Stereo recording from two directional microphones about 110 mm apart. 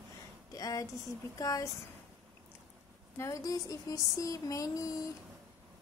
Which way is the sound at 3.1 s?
30° left (ahead or behind).